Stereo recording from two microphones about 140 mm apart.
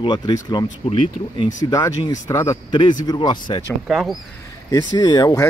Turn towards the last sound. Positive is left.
turn(degrees=30)  # may be behind; listen again after turning